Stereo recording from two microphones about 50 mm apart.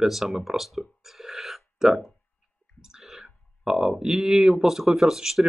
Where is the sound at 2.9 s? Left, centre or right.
Centre.